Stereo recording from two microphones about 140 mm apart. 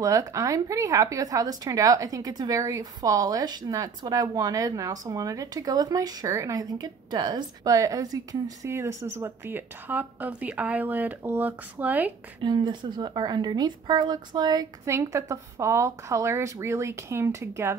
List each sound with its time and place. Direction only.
0.0 s a woman's voice: 25° right (ahead or behind)
12.4 s a woman's voice: 35° right (ahead or behind)